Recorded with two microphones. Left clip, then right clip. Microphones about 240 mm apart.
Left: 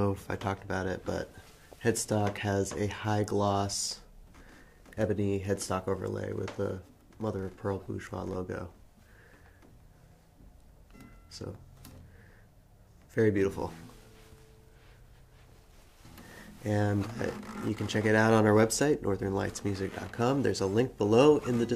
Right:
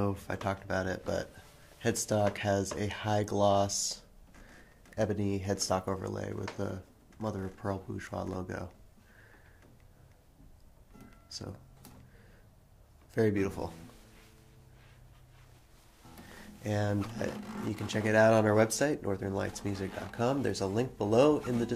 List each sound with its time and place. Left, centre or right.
0.0 s speech: centre
11.2 s speech: centre
13.1 s speech: centre
16.6 s speech: centre